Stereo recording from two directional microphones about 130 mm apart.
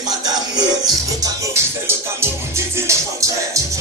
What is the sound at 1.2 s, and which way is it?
Music, 20° right (ahead or behind).